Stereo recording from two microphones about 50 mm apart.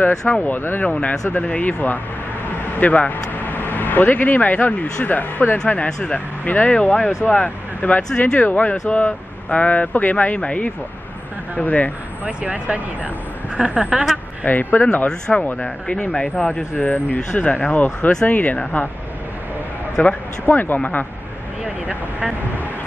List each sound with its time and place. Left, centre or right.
0.3 s speech: left
5.7 s speech: left
12.3 s speech: right
13.7 s a woman's voice: centre
14.4 s speech: left
15.0 s speech: centre
15.4 s speech: left
16.7 s speech: left
20.0 s speech: left
21.6 s speech: right